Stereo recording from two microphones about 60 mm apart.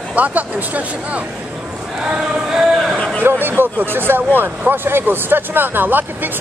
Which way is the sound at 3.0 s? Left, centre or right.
Left.